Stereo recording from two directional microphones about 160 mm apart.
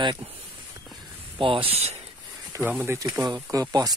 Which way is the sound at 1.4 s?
35° right (ahead or behind).